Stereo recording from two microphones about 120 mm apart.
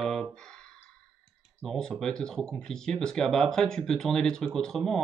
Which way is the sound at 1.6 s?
5° left (ahead or behind).